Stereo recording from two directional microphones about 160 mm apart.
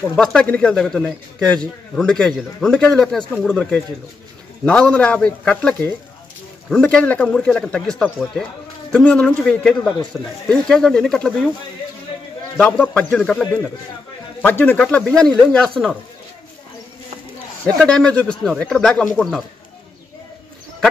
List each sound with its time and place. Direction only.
0.1 s a man's voice: 5° left (ahead or behind)
12.5 s a man's voice: centre (ahead or behind)
17.7 s a man's voice: 5° left (ahead or behind)